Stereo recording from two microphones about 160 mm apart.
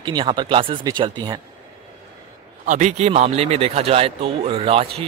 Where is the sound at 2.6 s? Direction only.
50° right (ahead or behind).